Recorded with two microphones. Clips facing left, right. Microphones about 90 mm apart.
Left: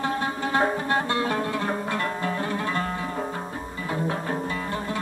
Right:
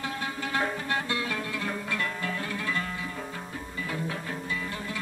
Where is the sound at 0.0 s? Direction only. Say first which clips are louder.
Left 7 dB; 40° left (ahead or behind).